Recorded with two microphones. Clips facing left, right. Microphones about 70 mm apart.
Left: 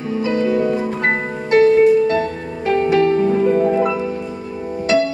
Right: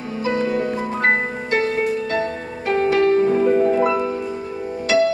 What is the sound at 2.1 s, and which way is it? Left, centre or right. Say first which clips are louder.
Music: left 3 dB; centre.